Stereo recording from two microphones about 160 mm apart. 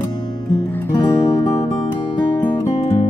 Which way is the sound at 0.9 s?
25° left (ahead or behind).